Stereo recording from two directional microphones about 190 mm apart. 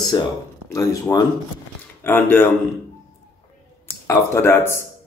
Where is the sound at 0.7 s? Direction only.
15° left (ahead or behind).